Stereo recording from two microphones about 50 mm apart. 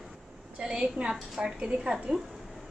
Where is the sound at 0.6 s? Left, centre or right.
Centre.